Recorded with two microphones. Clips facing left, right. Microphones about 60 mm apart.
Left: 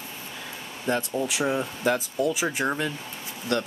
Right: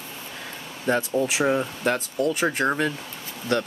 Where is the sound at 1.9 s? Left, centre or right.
Centre.